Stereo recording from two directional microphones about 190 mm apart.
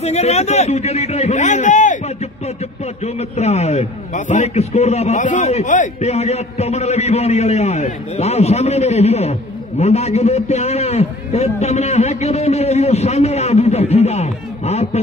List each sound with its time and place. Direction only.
0.0 s a man's voice: 35° left (ahead or behind)